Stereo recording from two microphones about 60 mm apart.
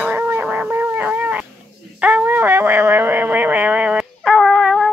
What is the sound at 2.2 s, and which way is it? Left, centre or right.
Shofar, right.